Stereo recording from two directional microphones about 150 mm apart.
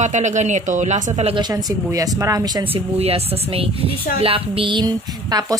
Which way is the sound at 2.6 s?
40° right (ahead or behind).